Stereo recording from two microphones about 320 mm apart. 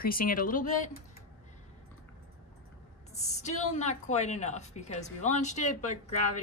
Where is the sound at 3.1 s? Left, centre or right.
Left.